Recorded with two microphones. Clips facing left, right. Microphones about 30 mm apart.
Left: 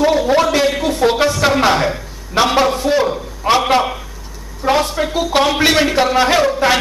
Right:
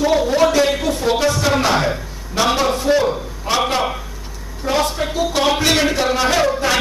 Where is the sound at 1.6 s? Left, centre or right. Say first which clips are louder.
Left 3 dB; centre.